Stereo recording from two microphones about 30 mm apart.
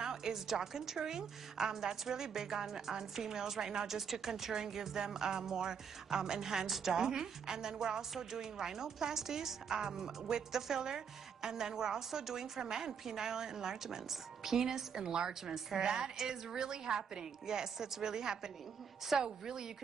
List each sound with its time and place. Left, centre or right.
0.0 s a woman's voice: centre